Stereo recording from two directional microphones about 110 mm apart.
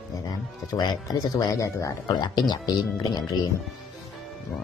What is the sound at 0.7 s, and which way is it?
Speech, 35° left (ahead or behind).